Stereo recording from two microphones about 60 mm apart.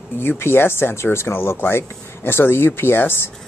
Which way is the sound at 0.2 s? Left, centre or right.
Left.